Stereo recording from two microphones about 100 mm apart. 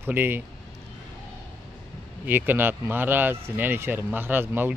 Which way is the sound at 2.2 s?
20° right (ahead or behind).